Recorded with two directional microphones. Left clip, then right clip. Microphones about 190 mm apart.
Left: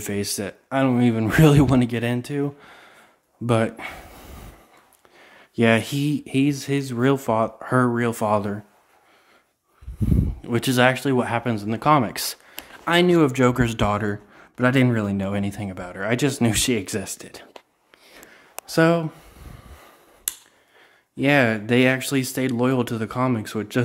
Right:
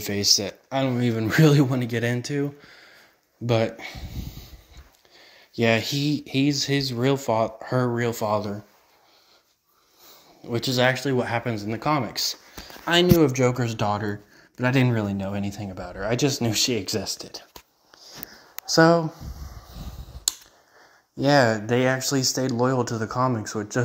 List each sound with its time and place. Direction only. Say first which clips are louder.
0.0 s speech: right 5 dB; 15° left (ahead or behind)
1.9 s speech: even; 10° left (ahead or behind); by 4.2 s 25° left (ahead or behind)
5.3 s speech: left 3 dB; 25° left (ahead or behind)
10.4 s speech: left 1 dB; 35° left (ahead or behind)
10.8 s speech: left 3 dB; 20° left (ahead or behind)
12.8 s speech: left 1 dB; 15° left (ahead or behind)
14.6 s speech: left 3 dB; 10° left (ahead or behind)
18.8 s speech: right 1 dB; 10° left (ahead or behind)
21.5 s speech: left 3 dB; 30° left (ahead or behind)
23.3 s speech: left 2 dB; 25° left (ahead or behind)